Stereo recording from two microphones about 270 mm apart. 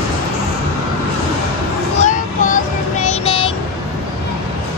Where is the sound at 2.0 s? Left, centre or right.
Left.